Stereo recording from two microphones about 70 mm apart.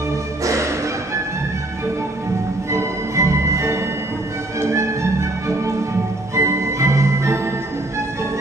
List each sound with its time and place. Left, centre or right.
0.4 s music: right
2.7 s music: right